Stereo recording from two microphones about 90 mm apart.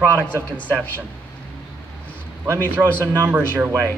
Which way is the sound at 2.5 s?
25° left (ahead or behind).